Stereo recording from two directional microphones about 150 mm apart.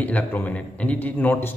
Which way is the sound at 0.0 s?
10° left (ahead or behind).